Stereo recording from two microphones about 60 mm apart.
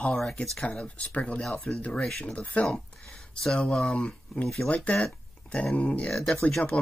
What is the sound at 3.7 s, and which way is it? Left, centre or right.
Speech, centre.